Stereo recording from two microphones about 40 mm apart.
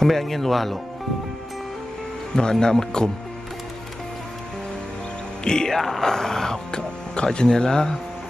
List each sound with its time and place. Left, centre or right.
0.0 s speech: centre
2.3 s speech: centre
5.4 s music: centre
5.8 s speech: centre